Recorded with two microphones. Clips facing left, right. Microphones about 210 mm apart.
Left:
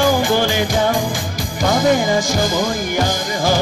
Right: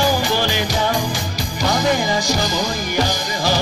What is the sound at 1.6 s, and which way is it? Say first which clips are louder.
Music: left 4 dB; 50° left (ahead or behind).